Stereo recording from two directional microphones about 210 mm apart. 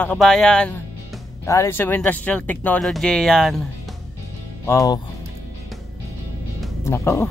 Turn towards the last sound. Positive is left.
turn(degrees=15)  # may be behind; listen again after turning